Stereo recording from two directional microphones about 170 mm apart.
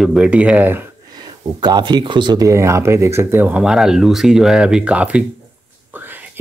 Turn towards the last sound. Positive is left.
turn(degrees=-10)  # may be behind; listen again after turning